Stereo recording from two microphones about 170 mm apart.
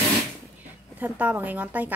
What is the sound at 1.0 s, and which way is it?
Speech, 10° right (ahead or behind).